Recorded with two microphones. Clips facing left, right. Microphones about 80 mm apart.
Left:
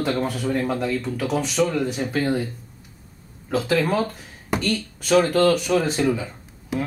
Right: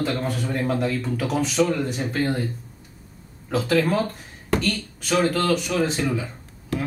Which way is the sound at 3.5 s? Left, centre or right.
Centre.